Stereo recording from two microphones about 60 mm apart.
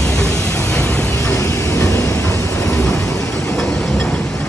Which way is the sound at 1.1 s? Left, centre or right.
Left.